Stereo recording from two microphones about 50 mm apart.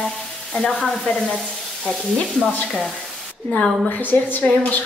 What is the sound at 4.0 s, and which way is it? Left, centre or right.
Speech, left.